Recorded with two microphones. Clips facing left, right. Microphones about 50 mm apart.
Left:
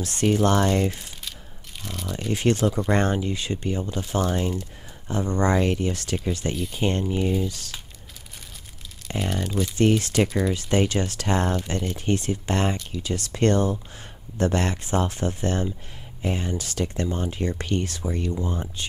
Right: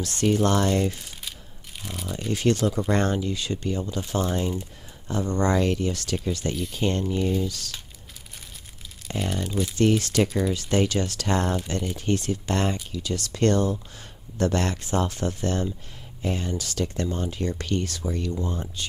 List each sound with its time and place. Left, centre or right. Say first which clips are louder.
0.0 s speech: left 1 dB; left
1.9 s a sound: left 1 dB; centre
2.3 s speech: left 1 dB; left
9.2 s speech: left 1 dB; centre
9.8 s speech: left 1 dB; left
10.2 s speech: left 1 dB; centre
10.5 s speech: left 1 dB; left